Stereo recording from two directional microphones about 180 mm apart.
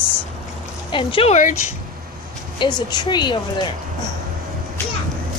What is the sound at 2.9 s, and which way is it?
Speech, 25° left (ahead or behind).